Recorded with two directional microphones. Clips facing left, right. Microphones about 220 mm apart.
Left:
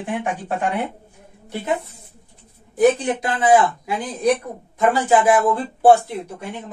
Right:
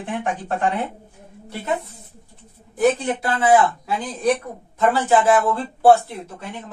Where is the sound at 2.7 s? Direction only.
15° left (ahead or behind).